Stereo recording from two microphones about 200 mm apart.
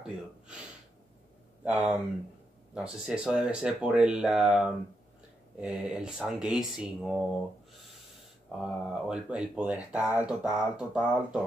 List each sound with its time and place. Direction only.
1.6 s speech: 5° right (ahead or behind)
8.5 s speech: centre (ahead or behind)